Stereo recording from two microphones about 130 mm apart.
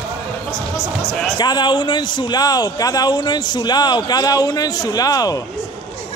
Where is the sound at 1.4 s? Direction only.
35° left (ahead or behind).